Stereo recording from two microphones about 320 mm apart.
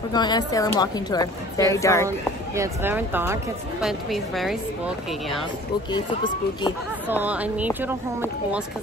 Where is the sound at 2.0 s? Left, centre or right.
Centre.